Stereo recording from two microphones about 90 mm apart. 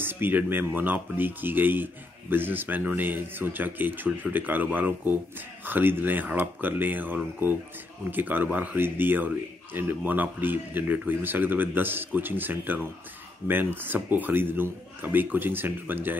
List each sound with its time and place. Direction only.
0.0 s speech: 25° right (ahead or behind)